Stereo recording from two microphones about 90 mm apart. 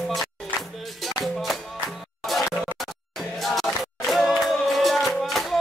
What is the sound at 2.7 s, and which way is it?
Music, centre (ahead or behind).